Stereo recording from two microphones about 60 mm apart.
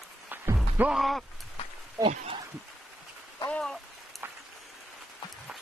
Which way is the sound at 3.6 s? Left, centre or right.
Centre.